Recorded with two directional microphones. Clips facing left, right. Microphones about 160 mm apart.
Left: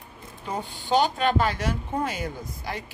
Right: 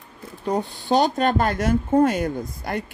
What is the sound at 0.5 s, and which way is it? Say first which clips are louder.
A woman's voice: right 5 dB; 40° right (ahead or behind).